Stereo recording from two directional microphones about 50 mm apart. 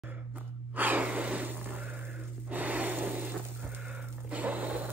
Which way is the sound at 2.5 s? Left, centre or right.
Right.